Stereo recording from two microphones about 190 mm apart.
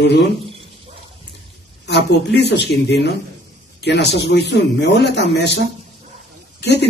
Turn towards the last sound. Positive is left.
turn(degrees=65)  # may be behind; listen again after turning